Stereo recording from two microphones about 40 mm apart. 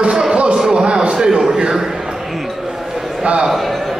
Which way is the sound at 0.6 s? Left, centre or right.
Right.